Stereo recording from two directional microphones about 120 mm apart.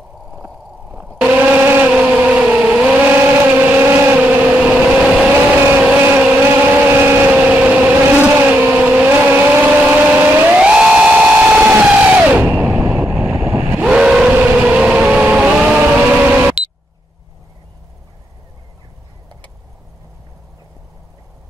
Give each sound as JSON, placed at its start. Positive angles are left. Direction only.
{"t": 0.9, "sound": "vehicle", "side_deg": -10}
{"t": 12.8, "sound": "train", "side_deg": -15}